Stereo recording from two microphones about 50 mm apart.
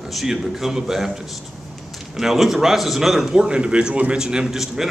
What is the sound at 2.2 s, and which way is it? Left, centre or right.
A man's voice, centre.